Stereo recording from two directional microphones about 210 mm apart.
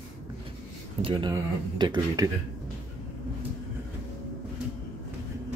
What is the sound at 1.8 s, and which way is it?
Speech, 20° right (ahead or behind).